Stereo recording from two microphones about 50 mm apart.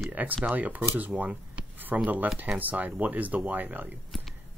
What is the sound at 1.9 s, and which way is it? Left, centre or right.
Speech, right.